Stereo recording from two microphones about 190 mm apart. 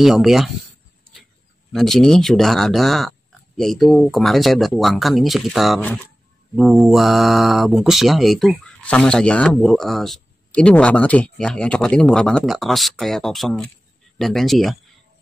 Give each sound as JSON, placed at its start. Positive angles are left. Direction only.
{"t": 0.0, "sound": "speech", "side_deg": 0}
{"t": 1.7, "sound": "speech", "side_deg": 0}